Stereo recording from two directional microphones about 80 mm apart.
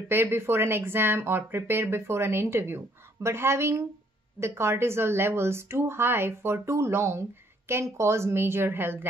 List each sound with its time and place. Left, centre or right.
0.1 s speech: right